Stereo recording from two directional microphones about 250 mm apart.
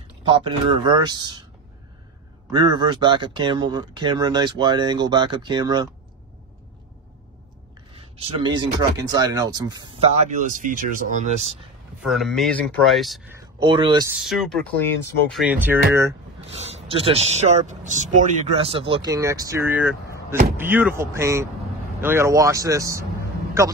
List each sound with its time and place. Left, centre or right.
0.3 s speech: centre
2.5 s speech: centre
7.9 s speech: right
10.2 s speech: right
12.0 s speech: centre
13.6 s speech: centre
14.1 s speech: centre
16.3 s speech: right